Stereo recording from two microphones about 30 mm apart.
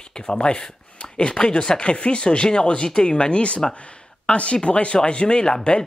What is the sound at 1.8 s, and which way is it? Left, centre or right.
Speech, left.